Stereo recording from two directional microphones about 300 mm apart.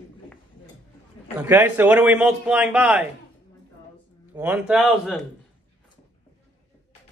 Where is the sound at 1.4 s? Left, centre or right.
Centre.